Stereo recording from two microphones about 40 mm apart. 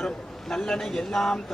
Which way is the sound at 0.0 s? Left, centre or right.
Centre.